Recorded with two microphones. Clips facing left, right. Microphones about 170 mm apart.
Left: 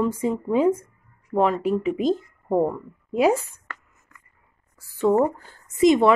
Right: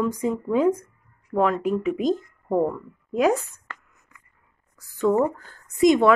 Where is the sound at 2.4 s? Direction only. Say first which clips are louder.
Left 1 dB; 15° left (ahead or behind).